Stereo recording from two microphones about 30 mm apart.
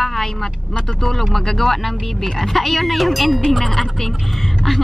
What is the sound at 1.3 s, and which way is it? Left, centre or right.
Speech, centre.